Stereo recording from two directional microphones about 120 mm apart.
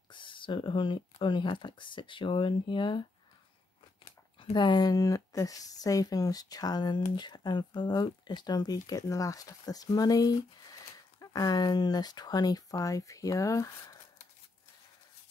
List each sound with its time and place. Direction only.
0.1 s a sound: 45° left (ahead or behind)
1.2 s speech: 45° left (ahead or behind)
4.6 s speech: 35° left (ahead or behind)